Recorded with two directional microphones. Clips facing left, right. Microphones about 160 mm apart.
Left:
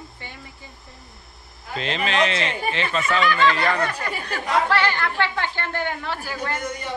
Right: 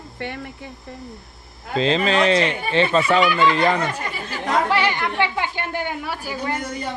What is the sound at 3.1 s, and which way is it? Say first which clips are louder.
Speech: even; 15° right (ahead or behind).